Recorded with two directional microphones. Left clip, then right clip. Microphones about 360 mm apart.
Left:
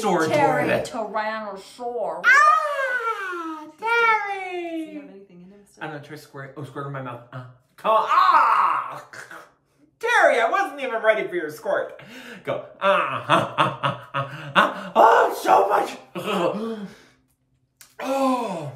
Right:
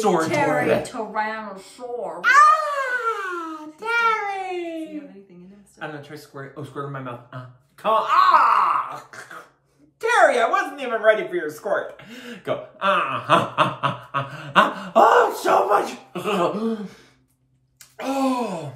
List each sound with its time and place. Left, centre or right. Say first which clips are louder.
0.2 s speech: left 1 dB; centre
2.2 s babbling: right 1 dB; centre
5.8 s speech: even; centre
17.9 s speech: left 1 dB; centre